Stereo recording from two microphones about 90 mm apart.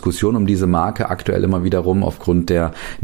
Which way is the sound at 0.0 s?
50° left (ahead or behind).